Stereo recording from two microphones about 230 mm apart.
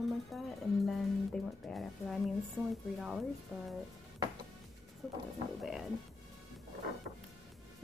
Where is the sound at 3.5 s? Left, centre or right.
Centre.